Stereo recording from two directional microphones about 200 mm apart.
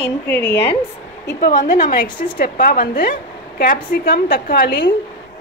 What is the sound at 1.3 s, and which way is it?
A woman's voice, 40° left (ahead or behind).